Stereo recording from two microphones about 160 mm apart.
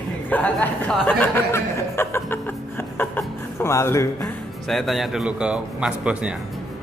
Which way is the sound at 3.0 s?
15° left (ahead or behind).